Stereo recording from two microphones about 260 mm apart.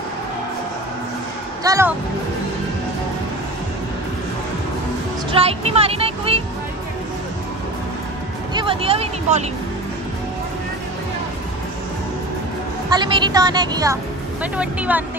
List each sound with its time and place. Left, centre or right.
1.6 s speech: centre
5.3 s speech: right
8.5 s speech: right
12.9 s speech: centre